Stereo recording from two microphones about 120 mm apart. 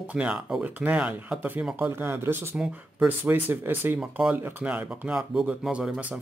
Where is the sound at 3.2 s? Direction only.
15° right (ahead or behind).